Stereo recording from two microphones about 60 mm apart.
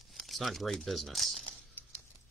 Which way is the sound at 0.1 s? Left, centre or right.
Centre.